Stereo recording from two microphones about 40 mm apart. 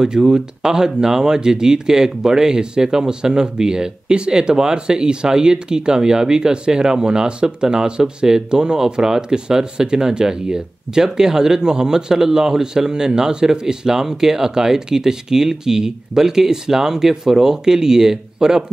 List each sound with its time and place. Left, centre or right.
0.0 s speech: centre